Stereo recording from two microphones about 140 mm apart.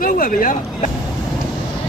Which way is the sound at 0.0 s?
85° left.